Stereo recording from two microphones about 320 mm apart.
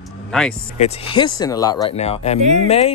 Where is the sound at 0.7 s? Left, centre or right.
Centre.